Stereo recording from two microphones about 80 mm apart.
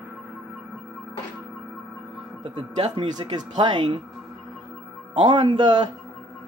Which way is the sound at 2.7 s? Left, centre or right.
Right.